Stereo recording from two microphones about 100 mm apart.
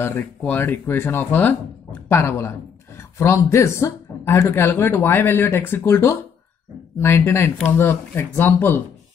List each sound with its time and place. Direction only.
0.4 s speech: 20° left (ahead or behind)